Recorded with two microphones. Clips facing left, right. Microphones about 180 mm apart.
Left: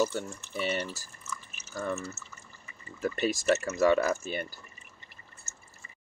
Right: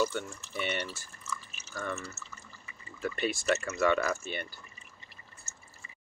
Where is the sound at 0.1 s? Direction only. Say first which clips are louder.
Left 2 dB; 40° left (ahead or behind).